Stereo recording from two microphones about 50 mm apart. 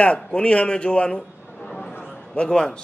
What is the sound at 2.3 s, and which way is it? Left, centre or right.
Speech, centre.